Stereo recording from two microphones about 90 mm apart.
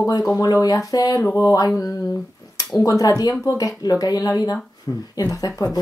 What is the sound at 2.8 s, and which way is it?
Speech, 40° left (ahead or behind).